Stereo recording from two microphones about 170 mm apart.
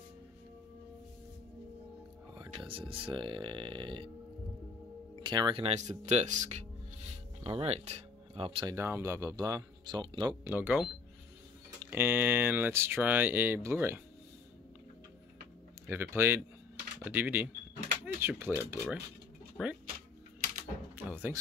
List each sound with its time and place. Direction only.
2.9 s speech: 30° right (ahead or behind)
5.2 s speech: 25° right (ahead or behind)
8.7 s speech: 15° right (ahead or behind)
10.5 s speech: 10° right (ahead or behind)
15.9 s speech: 15° right (ahead or behind)
20.9 s music: 10° right (ahead or behind)